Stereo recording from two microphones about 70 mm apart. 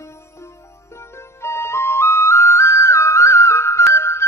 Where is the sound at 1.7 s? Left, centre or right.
Left.